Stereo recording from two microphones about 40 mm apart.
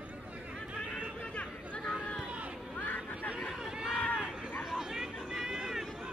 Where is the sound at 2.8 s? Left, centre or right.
Left.